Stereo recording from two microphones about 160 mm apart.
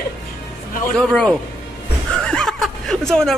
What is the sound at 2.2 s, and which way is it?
Chuckle, 5° left (ahead or behind).